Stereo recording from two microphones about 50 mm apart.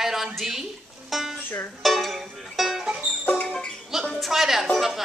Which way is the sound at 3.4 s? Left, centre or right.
Centre.